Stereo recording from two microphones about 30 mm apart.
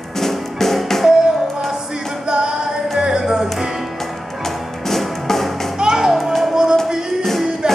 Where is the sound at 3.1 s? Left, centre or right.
Right.